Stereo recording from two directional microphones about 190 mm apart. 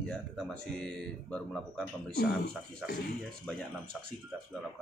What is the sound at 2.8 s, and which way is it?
Speech, centre (ahead or behind).